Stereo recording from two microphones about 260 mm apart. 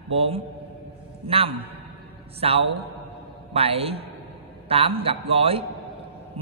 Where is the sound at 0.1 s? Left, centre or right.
Right.